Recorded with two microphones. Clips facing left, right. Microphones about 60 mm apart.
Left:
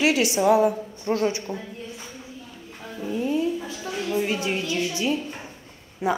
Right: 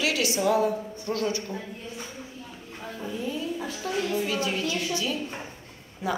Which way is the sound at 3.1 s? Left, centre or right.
Left.